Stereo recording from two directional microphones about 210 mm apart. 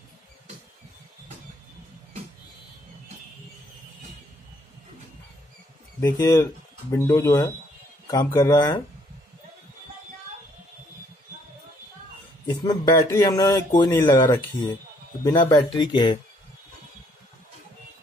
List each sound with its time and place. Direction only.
5.9 s speech: 15° left (ahead or behind)
12.4 s speech: 20° left (ahead or behind)